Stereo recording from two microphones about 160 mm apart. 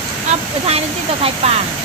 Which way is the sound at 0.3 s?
40° right (ahead or behind).